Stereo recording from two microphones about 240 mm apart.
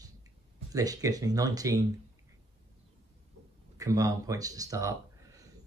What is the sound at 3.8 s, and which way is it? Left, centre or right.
Speech, centre.